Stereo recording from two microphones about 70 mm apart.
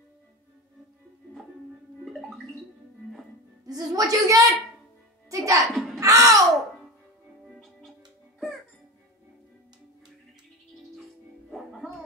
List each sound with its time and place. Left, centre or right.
3.6 s a woman's voice: right
5.3 s music: right
5.7 s music: centre
5.9 s a sound: right
7.4 s music: centre
11.5 s music: centre